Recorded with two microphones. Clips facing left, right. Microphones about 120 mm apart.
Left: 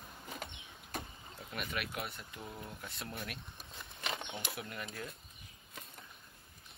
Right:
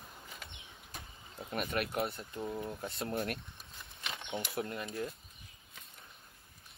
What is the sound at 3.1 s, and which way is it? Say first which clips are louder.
Speech: right 10 dB; 60° right (ahead or behind).